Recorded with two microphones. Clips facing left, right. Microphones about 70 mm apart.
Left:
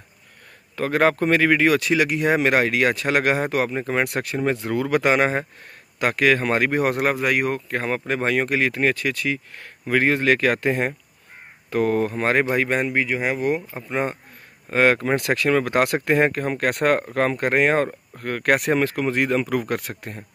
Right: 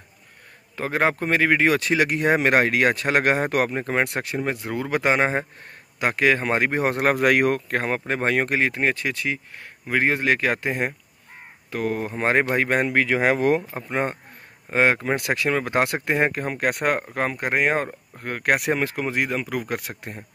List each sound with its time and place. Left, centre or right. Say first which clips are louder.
0.7 s speech: left 3 dB; centre
4.5 s speech: left 4 dB; centre; by 7.1 s right
7.1 s speech: right 3 dB; right
8.1 s speech: left 1 dB; right; by 10.9 s centre
11.7 s speech: left 5 dB; centre
12.0 s speech: left 1 dB; right
12.5 s speech: even; right
12.9 s speech: right 3 dB; right
13.6 s speech: even; right
14.7 s speech: left 2 dB; centre
18.1 s speech: left 1 dB; centre
19.9 s speech: left 1 dB; centre